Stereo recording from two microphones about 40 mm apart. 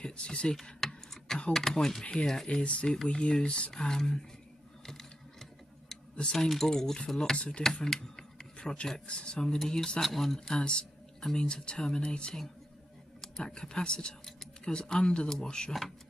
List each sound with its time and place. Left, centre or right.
0.0 s speech: left
0.8 s a sound: centre
1.5 s speech: centre
6.5 s speech: centre
7.3 s speech: left
7.7 s speech: centre
8.5 s speech: left; by 10.6 s centre
10.6 s a sound: left
11.2 s speech: left
13.4 s speech: left
14.2 s a sound: centre
14.7 s speech: left